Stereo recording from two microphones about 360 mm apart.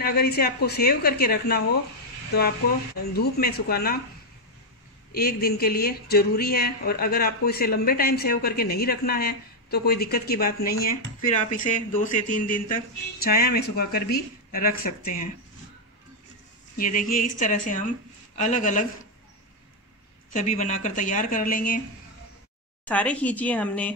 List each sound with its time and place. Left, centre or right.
0.0 s speech: left
3.1 s speech: left
5.1 s speech: left
16.7 s speech: left
20.3 s speech: centre
22.8 s speech: centre